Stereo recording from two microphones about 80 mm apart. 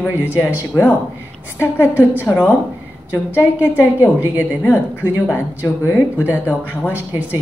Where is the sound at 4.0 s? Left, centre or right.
Right.